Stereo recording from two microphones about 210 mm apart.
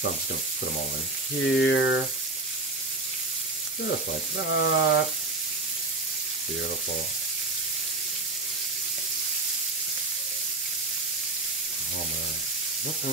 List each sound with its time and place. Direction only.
1.5 s speech: 60° left (ahead or behind)
4.5 s speech: 65° left (ahead or behind)